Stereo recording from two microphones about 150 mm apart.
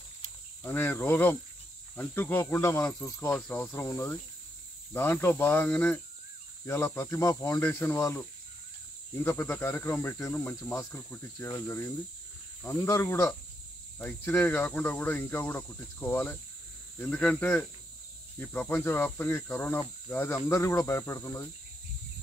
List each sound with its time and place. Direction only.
0.7 s speech: 15° left (ahead or behind)
3.3 s speech: 5° left (ahead or behind)
3.7 s speech: 20° left (ahead or behind)